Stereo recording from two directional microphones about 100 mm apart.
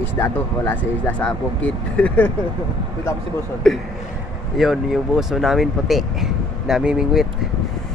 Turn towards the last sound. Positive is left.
turn(degrees=-5)  # may be behind; listen again after turning